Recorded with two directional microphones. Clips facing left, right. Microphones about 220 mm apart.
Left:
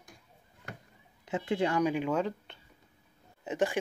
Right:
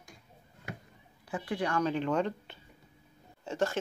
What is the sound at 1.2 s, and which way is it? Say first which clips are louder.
Speech: left 4 dB; 25° left (ahead or behind).